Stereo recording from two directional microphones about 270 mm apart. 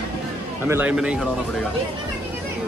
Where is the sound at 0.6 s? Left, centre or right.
Centre.